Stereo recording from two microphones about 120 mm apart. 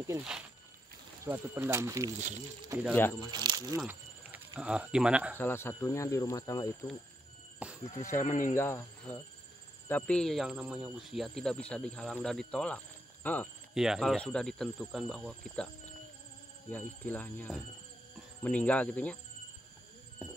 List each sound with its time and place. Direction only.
1.2 s speech: 20° right (ahead or behind)
2.9 s speech: 15° left (ahead or behind)
3.2 s speech: 35° right (ahead or behind)
3.8 s a sound: 15° right (ahead or behind)
4.6 s speech: 10° right (ahead or behind)
5.4 s speech: 20° left (ahead or behind)
7.5 s a sound: 10° right (ahead or behind)
8.0 s speech: 25° left (ahead or behind)
8.3 s speech: 90° left
8.5 s speech: 20° left (ahead or behind)
13.7 s speech: 5° right (ahead or behind)
16.7 s speech: 15° left (ahead or behind)